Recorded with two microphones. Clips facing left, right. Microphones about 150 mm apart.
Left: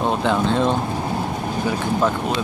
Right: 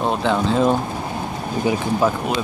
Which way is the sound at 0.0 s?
Centre (ahead or behind).